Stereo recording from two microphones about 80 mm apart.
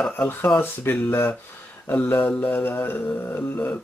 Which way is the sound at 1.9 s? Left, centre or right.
Centre.